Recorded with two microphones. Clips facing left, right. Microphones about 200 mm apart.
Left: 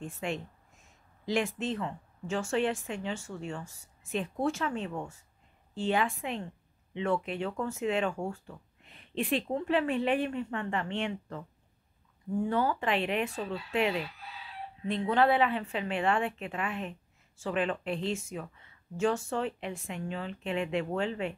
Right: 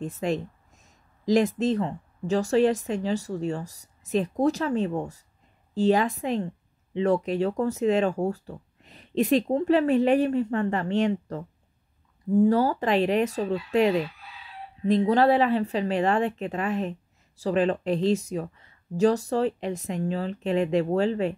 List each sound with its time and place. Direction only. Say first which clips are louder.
0.0 s speech: right 8 dB; 40° right (ahead or behind)